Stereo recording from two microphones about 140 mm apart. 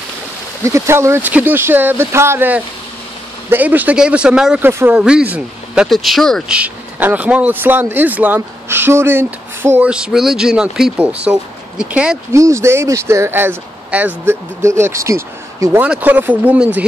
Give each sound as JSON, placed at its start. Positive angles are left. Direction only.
{"t": 0.7, "sound": "speech", "side_deg": -20}
{"t": 6.5, "sound": "speech", "side_deg": -10}
{"t": 12.3, "sound": "speech", "side_deg": -20}